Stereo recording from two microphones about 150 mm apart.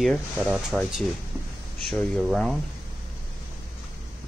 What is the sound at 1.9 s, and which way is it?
Speech, centre (ahead or behind).